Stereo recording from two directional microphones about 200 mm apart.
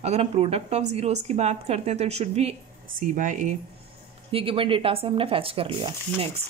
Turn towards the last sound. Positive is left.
turn(degrees=-25)  # may be behind; listen again after turning